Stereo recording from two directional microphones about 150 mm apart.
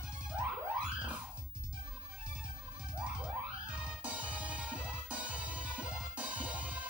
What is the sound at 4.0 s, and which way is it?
Music, 10° right (ahead or behind).